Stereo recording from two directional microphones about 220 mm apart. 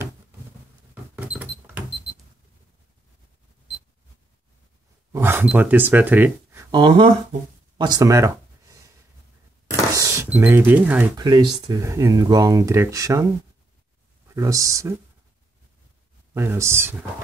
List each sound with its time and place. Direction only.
1.1 s a sound: 5° right (ahead or behind)
5.1 s speech: 10° right (ahead or behind)
7.7 s a sound: 20° right (ahead or behind)
9.9 s speech: 15° right (ahead or behind)
11.1 s speech: 20° right (ahead or behind)
14.3 s speech: 15° right (ahead or behind)
16.3 s speech: 10° right (ahead or behind)